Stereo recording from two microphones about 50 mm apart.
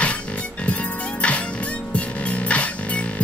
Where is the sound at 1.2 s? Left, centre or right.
Left.